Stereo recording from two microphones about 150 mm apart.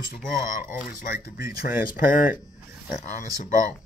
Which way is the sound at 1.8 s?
70° left (ahead or behind).